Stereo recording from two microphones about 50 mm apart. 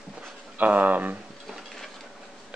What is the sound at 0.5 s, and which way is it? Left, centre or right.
Speech, right.